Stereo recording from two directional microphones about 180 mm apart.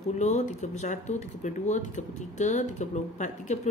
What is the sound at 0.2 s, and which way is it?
A woman's voice, 40° left (ahead or behind).